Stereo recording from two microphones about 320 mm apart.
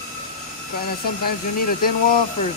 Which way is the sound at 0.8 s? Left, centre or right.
Left.